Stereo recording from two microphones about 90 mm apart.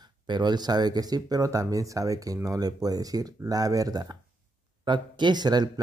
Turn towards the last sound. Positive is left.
turn(degrees=-50)  # may be behind; listen again after turning